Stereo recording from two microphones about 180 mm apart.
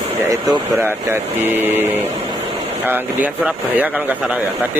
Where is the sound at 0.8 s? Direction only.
10° right (ahead or behind).